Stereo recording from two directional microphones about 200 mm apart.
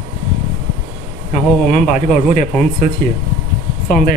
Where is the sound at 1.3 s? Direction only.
40° left (ahead or behind).